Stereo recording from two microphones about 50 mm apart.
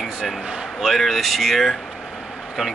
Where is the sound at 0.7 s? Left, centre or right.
Centre.